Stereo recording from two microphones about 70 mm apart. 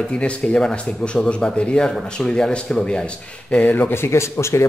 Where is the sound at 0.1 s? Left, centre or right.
Centre.